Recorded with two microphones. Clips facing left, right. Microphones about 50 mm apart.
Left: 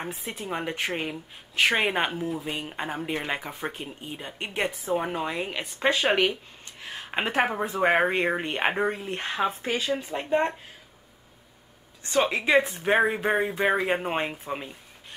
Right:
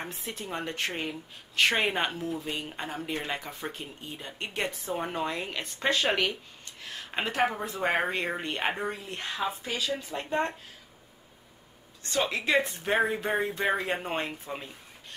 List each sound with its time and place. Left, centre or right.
0.2 s a woman's voice: centre
8.7 s speech: left
12.0 s speech: left